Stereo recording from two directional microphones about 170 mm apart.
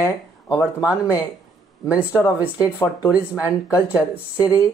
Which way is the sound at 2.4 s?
10° right (ahead or behind).